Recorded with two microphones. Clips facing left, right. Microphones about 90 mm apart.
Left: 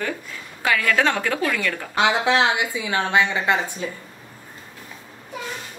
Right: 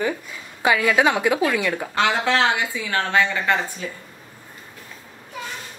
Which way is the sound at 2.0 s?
15° left (ahead or behind).